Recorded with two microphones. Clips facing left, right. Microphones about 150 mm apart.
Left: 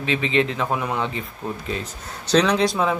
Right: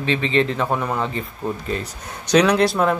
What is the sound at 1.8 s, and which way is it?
Speech, 10° right (ahead or behind).